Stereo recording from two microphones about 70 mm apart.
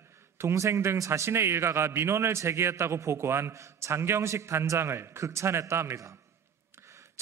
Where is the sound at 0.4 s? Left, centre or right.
Right.